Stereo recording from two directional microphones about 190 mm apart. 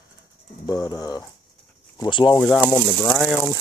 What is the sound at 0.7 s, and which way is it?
Speech, 20° left (ahead or behind).